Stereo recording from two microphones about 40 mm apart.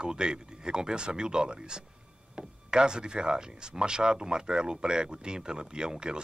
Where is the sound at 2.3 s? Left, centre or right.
Right.